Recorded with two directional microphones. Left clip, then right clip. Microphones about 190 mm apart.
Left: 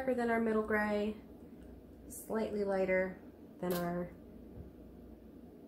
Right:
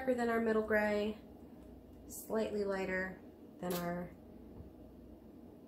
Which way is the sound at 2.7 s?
20° left (ahead or behind).